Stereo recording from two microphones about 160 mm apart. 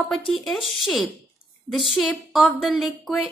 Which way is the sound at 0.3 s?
Centre (ahead or behind).